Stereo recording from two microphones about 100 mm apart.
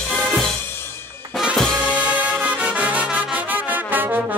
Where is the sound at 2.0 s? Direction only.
15° right (ahead or behind).